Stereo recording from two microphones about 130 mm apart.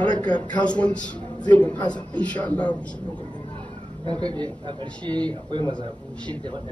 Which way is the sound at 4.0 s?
30° right (ahead or behind).